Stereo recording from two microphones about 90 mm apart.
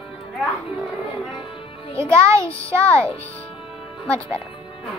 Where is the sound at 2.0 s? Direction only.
35° right (ahead or behind).